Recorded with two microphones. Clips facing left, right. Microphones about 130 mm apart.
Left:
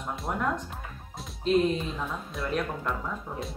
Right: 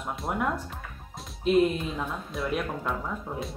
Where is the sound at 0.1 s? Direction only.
Centre (ahead or behind).